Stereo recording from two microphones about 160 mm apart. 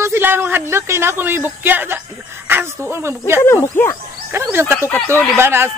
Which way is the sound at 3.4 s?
15° left (ahead or behind).